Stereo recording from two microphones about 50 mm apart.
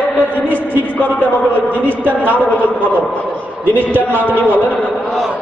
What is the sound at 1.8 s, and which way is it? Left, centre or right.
A woman's voice, right.